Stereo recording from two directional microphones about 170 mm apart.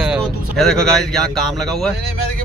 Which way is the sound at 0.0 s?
Centre (ahead or behind).